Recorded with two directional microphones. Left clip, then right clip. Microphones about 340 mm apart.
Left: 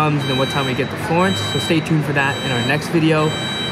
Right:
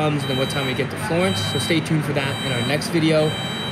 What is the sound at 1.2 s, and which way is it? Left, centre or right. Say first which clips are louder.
Speech: left 3 dB; centre.